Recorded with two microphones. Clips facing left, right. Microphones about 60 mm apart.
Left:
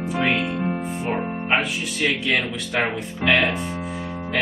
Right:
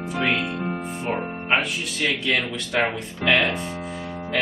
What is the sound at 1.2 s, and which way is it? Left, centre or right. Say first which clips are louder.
Speech: left 1 dB; centre.